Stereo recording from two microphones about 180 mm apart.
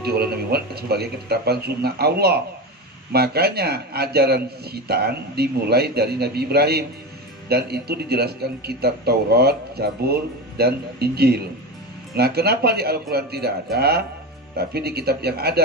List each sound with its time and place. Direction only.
0.0 s a man's voice: 60° right (ahead or behind)